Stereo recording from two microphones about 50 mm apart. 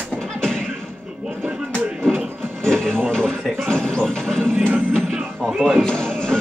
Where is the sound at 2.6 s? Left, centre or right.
Centre.